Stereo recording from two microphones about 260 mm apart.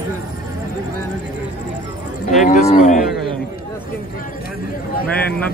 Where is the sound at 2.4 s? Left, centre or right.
Left.